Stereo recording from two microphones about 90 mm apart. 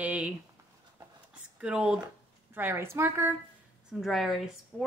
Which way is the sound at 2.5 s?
25° right (ahead or behind).